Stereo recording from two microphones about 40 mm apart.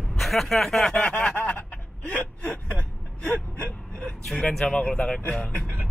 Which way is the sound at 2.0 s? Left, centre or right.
Left.